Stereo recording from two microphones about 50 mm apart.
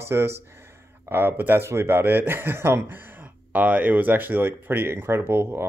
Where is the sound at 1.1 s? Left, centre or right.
Right.